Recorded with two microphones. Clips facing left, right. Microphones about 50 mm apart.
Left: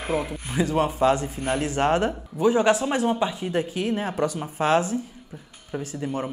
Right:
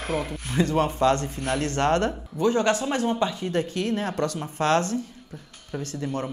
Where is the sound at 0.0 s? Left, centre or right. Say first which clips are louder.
Left 2 dB; centre.